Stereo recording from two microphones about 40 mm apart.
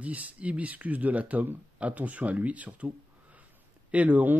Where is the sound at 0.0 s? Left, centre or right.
Right.